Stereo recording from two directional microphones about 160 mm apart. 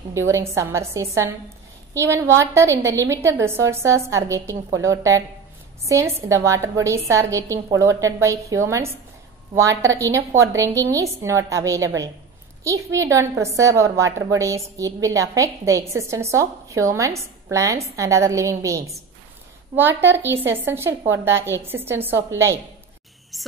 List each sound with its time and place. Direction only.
0.1 s a woman's voice: 20° right (ahead or behind)
23.3 s speech: centre (ahead or behind)